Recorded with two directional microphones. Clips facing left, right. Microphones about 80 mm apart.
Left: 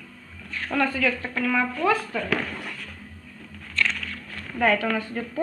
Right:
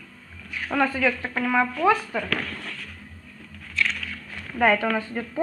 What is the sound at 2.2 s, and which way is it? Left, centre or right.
Speech, centre.